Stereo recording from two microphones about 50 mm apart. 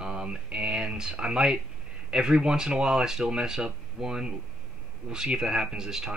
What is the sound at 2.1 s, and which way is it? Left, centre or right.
Speech, centre.